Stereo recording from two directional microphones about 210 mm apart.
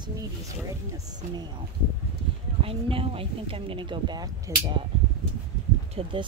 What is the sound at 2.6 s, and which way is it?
Speech, 25° right (ahead or behind).